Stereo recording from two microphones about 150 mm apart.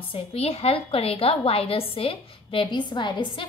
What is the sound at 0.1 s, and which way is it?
A woman's voice, 40° left (ahead or behind).